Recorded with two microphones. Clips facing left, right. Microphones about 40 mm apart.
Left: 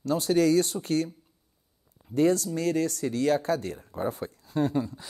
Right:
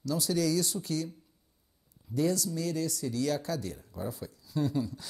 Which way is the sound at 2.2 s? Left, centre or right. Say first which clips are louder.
Left 6 dB; left.